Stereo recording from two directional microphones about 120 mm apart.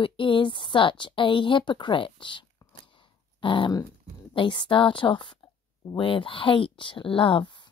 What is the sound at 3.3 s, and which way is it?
Dog, 45° left (ahead or behind).